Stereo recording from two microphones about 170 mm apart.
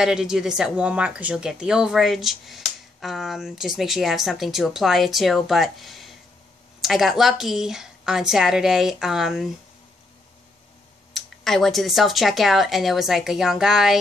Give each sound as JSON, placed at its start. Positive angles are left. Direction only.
{"t": 0.0, "sound": "speech", "side_deg": -5}
{"t": 11.1, "sound": "speech", "side_deg": 0}